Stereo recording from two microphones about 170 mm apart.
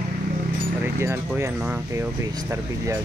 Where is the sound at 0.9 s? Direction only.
15° right (ahead or behind).